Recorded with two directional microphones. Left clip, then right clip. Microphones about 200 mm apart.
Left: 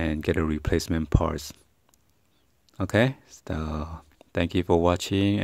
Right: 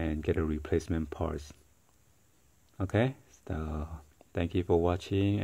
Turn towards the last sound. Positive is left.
turn(degrees=25)  # may be behind; listen again after turning